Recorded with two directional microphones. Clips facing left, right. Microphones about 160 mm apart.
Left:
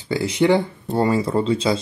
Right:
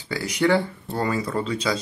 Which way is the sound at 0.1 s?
25° left (ahead or behind).